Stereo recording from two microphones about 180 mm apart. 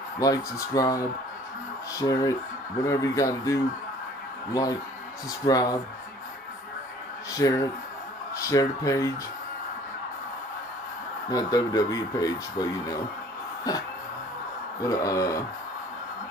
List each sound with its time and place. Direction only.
0.2 s speech: 20° left (ahead or behind)
5.4 s speech: 20° left (ahead or behind)
7.3 s speech: 20° left (ahead or behind)
11.2 s speech: 20° left (ahead or behind)
14.9 s speech: 20° left (ahead or behind)